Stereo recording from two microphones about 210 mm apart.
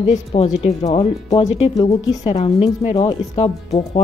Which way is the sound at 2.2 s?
30° left (ahead or behind).